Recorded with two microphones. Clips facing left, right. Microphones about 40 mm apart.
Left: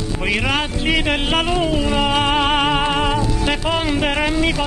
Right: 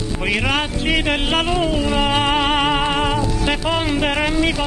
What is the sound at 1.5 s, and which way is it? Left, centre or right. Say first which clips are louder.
Music: even; centre.